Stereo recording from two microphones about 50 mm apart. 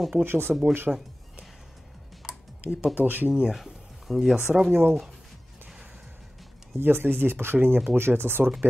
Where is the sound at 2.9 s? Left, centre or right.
Right.